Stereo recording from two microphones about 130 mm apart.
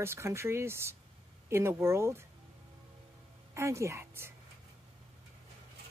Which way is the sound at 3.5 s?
20° right (ahead or behind).